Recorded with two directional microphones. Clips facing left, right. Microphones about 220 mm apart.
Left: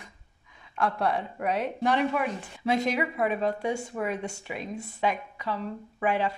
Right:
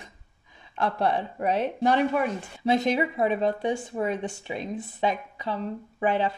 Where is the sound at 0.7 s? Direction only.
30° right (ahead or behind).